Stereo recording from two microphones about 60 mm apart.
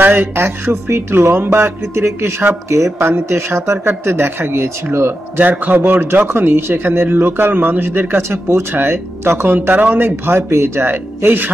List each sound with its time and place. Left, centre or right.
0.0 s speech: right
0.4 s speech: right
5.4 s a man's voice: right